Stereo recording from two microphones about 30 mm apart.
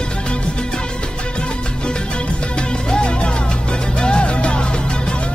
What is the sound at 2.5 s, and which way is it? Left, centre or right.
Music, left.